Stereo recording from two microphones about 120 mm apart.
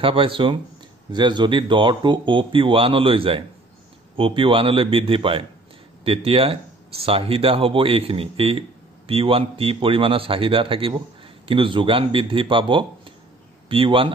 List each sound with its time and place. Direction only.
0.0 s a man's voice: 50° right (ahead or behind)